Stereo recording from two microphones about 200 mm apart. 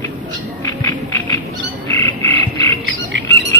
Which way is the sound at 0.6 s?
15° left (ahead or behind).